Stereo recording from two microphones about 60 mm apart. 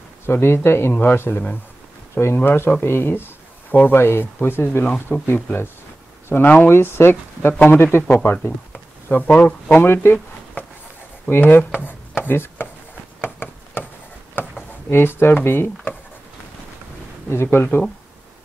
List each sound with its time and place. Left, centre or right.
0.3 s speech: left
5.2 s speech: left
9.3 s speech: left
10.6 s writing: left
11.2 s speech: left
12.2 s chopping: left
13.2 s a sound: left
14.9 s speech: left
17.3 s speech: left